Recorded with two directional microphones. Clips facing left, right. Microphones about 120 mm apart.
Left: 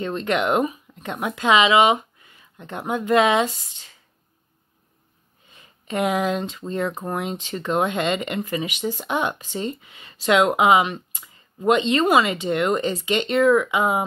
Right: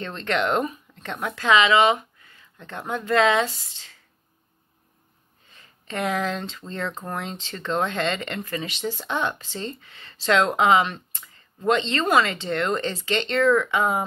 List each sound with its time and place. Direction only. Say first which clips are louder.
0.0 s speech: left 3 dB; 15° left (ahead or behind)
5.5 s speech: left 5 dB; 15° left (ahead or behind)